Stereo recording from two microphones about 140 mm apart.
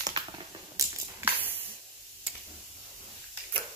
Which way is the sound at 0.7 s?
20° right (ahead or behind).